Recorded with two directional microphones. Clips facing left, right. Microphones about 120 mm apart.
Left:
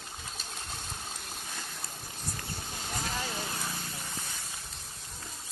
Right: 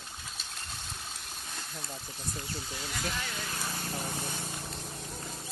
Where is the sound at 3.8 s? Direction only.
40° right (ahead or behind).